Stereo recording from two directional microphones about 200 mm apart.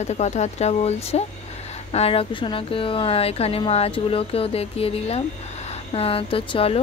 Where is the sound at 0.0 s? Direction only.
35° left (ahead or behind).